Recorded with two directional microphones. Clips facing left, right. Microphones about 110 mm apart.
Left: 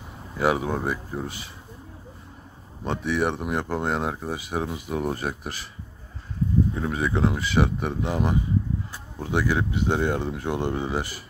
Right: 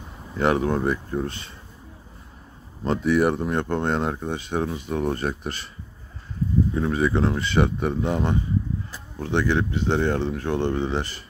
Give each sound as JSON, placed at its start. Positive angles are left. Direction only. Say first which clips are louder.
{"t": 0.4, "sound": "speech", "louder": "right 2 dB", "side_deg": 5}
{"t": 2.8, "sound": "speech", "louder": "right 5 dB", "side_deg": 0}
{"t": 6.7, "sound": "speech", "louder": "right 4 dB", "side_deg": 0}